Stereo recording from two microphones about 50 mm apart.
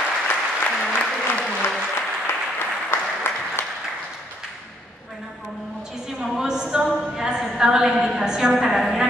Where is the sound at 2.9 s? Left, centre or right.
Left.